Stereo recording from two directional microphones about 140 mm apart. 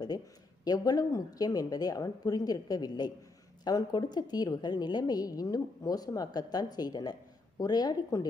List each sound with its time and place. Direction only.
0.7 s a woman's voice: 25° left (ahead or behind)